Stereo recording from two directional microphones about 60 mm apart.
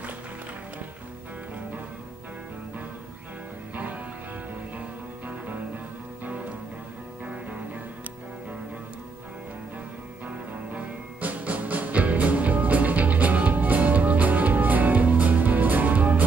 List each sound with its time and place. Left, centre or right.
3.7 s music: right
7.2 s music: right
10.2 s music: right